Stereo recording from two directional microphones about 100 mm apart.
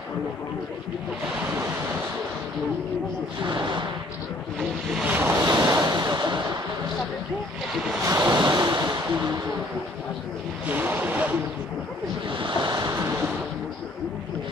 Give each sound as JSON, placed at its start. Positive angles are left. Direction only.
{"t": 3.4, "sound": "speech", "side_deg": -50}
{"t": 5.0, "sound": "speech", "side_deg": -20}
{"t": 5.4, "sound": "a sound", "side_deg": -40}
{"t": 8.0, "sound": "waves", "side_deg": -35}
{"t": 10.7, "sound": "speech", "side_deg": -20}
{"t": 12.3, "sound": "waves", "side_deg": -55}